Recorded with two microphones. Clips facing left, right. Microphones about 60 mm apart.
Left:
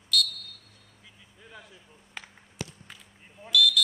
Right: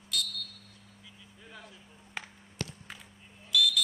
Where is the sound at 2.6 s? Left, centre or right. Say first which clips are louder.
Even; centre.